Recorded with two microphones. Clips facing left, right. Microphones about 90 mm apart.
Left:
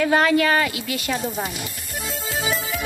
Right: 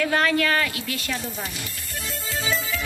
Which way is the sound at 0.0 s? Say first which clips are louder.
Left 4 dB; 20° left (ahead or behind).